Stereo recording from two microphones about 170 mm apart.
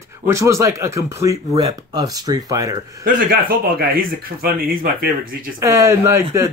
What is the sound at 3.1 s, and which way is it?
Speech, 55° right (ahead or behind).